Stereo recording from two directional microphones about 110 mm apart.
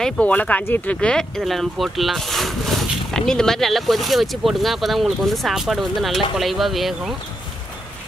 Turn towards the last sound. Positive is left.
turn(degrees=0)  # may be behind; listen again after turning